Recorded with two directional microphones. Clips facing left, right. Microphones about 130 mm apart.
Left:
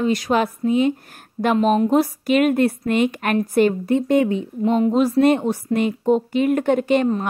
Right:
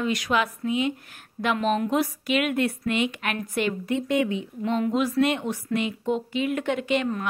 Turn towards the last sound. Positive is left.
turn(degrees=40)  # may be behind; listen again after turning